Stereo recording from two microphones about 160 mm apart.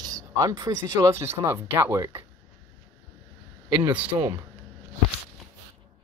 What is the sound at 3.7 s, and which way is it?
Speech, 15° right (ahead or behind).